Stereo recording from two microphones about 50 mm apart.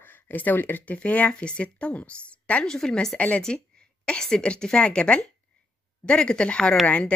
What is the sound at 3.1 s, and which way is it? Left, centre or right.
A woman's voice, left.